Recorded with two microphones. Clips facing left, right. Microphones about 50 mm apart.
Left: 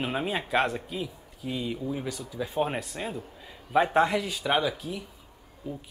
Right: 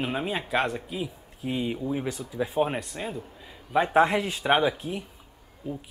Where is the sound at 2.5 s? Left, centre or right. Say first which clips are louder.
Right 1 dB; centre.